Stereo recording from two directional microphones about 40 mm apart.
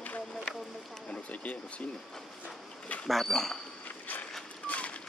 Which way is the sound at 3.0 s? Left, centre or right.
Centre.